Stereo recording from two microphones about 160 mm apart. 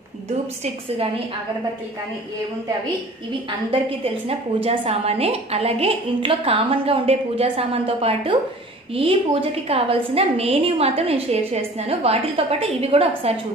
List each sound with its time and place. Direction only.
3.7 s a woman's voice: 35° right (ahead or behind)